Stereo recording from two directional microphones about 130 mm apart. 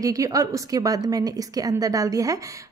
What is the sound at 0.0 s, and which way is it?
A woman's voice, 25° right (ahead or behind).